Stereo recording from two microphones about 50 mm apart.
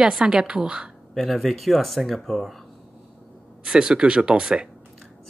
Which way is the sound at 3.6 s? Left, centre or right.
Centre.